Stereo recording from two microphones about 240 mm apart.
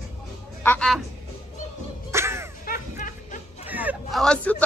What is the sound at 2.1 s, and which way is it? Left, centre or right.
Crow, centre.